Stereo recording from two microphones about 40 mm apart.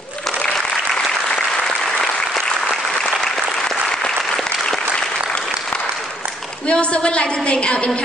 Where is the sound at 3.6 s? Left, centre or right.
Centre.